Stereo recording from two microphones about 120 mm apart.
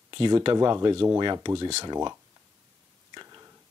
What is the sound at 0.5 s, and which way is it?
Speech, 25° right (ahead or behind).